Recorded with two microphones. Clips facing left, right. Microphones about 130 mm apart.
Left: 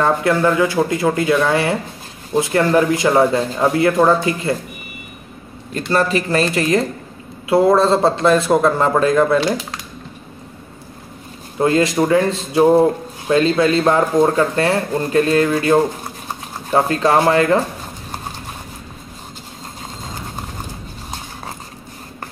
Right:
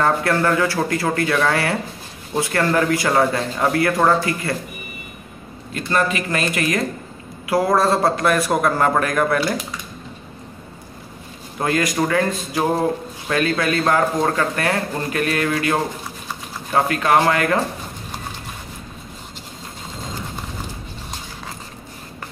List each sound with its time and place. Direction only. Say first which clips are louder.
0.0 s a man's voice: left 3 dB; 15° left (ahead or behind)
5.8 s a man's voice: left 3 dB; 35° left (ahead or behind)
11.6 s a man's voice: left 5 dB; 25° left (ahead or behind)